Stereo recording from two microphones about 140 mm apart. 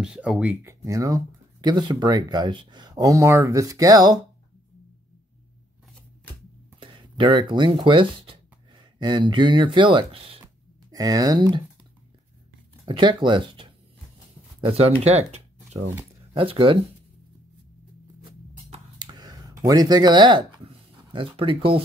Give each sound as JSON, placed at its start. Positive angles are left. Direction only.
{"t": 0.0, "sound": "speech", "side_deg": -5}
{"t": 0.7, "sound": "speech", "side_deg": -20}
{"t": 6.8, "sound": "speech", "side_deg": -35}
{"t": 10.4, "sound": "a sound", "side_deg": -25}
{"t": 12.8, "sound": "speech", "side_deg": -35}
{"t": 14.6, "sound": "speech", "side_deg": -45}
{"t": 16.3, "sound": "speech", "side_deg": -40}
{"t": 18.9, "sound": "a sound", "side_deg": -30}